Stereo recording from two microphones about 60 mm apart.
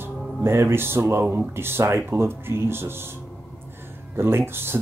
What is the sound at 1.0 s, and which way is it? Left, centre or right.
Speech, right.